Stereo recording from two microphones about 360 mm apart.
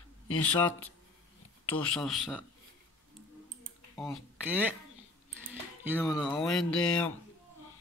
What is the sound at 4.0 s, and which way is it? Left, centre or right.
Speech, centre.